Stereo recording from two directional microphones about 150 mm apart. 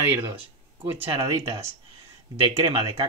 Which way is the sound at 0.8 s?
35° right (ahead or behind).